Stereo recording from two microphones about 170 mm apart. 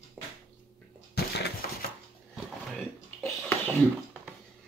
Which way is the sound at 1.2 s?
70° left (ahead or behind).